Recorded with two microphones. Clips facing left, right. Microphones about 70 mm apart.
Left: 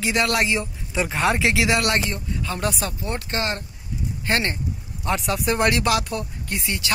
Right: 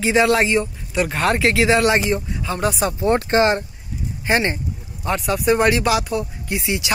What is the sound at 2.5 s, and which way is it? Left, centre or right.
Speech, centre.